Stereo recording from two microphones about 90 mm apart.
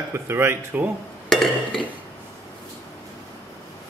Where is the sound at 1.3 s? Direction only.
5° left (ahead or behind).